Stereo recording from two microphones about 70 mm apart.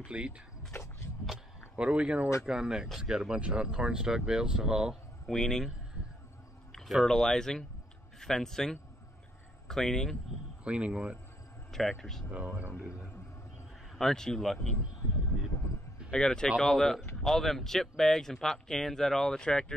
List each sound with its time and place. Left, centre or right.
0.0 s speech: centre
1.8 s speech: centre
5.3 s speech: centre
7.1 s speech: centre
10.6 s speech: centre
11.7 s speech: centre
12.3 s speech: centre
13.9 s speech: centre
16.1 s speech: centre